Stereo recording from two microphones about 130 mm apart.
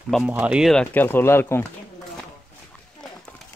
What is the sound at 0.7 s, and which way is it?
Speech, 10° left (ahead or behind).